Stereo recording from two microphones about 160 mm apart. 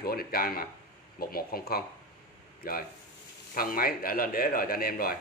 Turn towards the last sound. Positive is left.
turn(degrees=65)  # may be behind; listen again after turning